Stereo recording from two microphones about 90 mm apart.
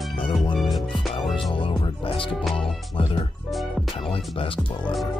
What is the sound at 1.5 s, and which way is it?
Music, 75° left (ahead or behind).